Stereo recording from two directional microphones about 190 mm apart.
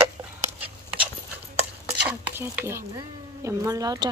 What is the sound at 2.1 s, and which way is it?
Stir, 10° right (ahead or behind).